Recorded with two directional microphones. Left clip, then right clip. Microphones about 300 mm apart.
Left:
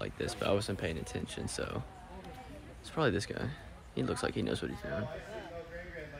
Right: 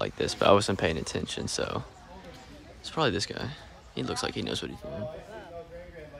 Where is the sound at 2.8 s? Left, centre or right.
Centre.